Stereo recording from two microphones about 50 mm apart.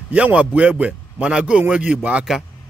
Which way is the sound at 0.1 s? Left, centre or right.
Right.